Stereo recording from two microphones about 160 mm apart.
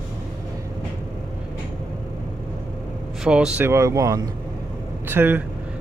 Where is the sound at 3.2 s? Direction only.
5° right (ahead or behind).